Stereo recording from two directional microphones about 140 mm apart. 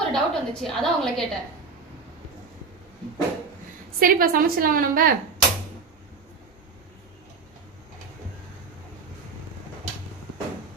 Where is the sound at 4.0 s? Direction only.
90° right.